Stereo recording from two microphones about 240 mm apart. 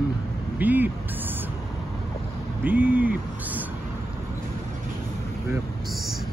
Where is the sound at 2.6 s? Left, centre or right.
Centre.